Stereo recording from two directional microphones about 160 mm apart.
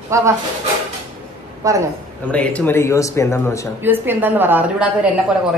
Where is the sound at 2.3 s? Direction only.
10° left (ahead or behind).